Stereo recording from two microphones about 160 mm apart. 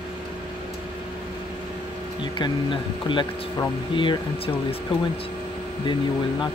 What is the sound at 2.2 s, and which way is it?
Speech, 30° left (ahead or behind).